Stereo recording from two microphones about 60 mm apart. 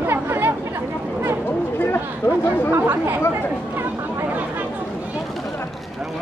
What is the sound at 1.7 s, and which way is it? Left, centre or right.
Speech, left.